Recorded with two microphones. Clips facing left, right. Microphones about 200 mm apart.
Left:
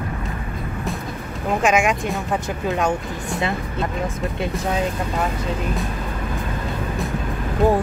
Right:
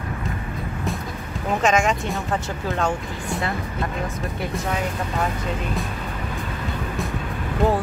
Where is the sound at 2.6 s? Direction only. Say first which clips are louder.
Left 3 dB; 20° left (ahead or behind).